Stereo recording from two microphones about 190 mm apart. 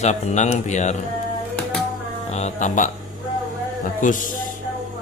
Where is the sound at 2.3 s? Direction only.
40° left (ahead or behind).